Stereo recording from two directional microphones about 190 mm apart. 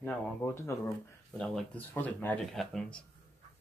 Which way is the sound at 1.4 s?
5° left (ahead or behind).